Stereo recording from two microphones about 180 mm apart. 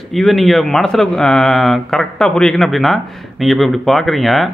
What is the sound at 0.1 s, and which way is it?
Speech, centre (ahead or behind).